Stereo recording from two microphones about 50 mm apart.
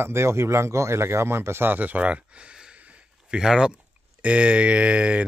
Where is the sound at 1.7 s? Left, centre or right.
Right.